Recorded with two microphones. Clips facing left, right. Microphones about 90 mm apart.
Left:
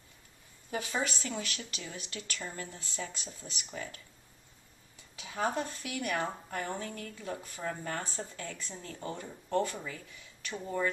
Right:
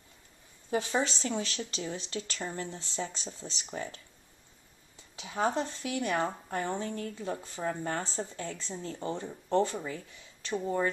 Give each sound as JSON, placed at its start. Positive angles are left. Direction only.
{"t": 0.7, "sound": "speech", "side_deg": -25}
{"t": 5.1, "sound": "speech", "side_deg": -25}